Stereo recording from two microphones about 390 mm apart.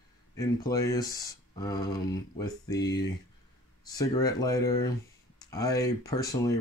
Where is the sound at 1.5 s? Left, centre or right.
Centre.